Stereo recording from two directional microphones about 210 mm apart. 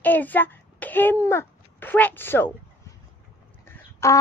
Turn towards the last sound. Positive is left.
turn(degrees=15)  # may be behind; listen again after turning